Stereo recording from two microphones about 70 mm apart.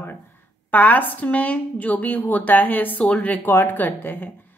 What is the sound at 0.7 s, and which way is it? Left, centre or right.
A woman's voice, left.